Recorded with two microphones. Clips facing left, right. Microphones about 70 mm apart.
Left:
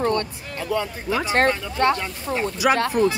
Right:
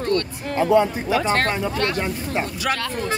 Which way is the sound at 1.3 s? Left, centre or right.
Left.